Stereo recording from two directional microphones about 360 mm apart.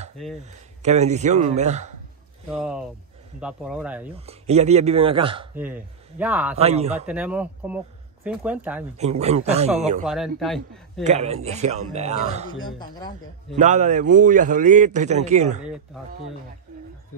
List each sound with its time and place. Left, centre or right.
0.5 s a man's voice: centre
2.6 s speech: centre
4.1 s speech: centre
6.5 s speech: centre
7.1 s speech: centre
8.9 s speech: centre
10.0 s speech: centre
11.1 s speech: centre
12.5 s speech: centre
13.6 s a man's voice: centre
15.6 s speech: centre